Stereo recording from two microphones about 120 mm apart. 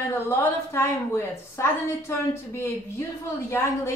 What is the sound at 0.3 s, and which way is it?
A woman's voice, 20° left (ahead or behind).